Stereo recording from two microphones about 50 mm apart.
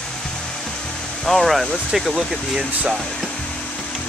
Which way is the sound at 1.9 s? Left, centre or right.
Centre.